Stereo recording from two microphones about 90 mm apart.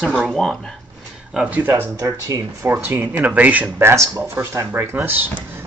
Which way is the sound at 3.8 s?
30° right (ahead or behind).